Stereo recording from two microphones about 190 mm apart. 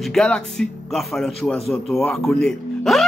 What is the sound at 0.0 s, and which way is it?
Speech, centre (ahead or behind).